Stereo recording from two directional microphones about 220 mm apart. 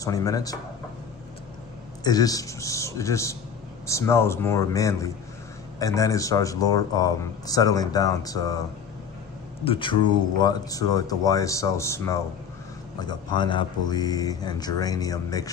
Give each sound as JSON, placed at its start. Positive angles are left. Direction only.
{"t": 0.0, "sound": "a man's voice", "side_deg": 15}
{"t": 2.0, "sound": "a man's voice", "side_deg": 15}
{"t": 9.7, "sound": "a man's voice", "side_deg": 20}